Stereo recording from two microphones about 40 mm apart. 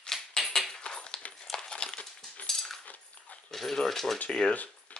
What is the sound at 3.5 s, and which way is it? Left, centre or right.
Speech, centre.